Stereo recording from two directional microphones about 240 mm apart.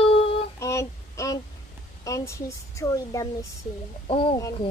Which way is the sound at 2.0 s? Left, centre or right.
Centre.